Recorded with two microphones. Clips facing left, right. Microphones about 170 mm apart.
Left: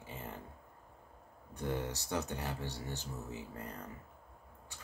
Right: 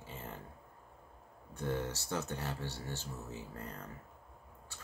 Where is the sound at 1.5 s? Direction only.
15° left (ahead or behind).